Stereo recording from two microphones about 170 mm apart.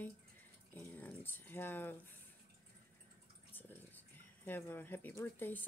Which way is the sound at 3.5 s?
10° left (ahead or behind).